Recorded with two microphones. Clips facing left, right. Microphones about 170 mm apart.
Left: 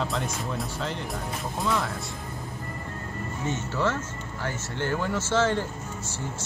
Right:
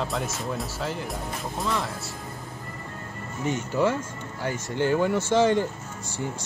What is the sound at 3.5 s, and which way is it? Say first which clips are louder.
Speech: right 4 dB; 15° right (ahead or behind).